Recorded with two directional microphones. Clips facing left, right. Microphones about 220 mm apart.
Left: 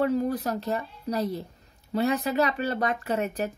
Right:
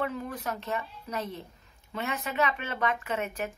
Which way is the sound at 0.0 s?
35° left (ahead or behind).